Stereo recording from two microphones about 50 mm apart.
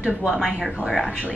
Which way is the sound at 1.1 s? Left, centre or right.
Right.